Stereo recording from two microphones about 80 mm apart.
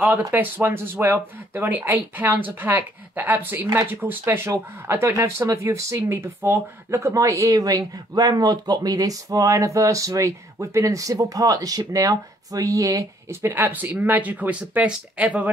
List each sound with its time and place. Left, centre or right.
0.3 s speech: right